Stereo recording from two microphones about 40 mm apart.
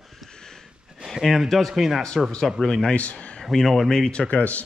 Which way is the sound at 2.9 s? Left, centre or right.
Left.